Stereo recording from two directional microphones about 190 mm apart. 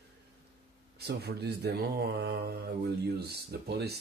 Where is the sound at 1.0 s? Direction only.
60° right (ahead or behind).